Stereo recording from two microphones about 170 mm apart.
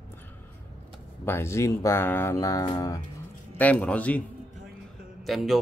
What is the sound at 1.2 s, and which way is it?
Speech, 15° left (ahead or behind).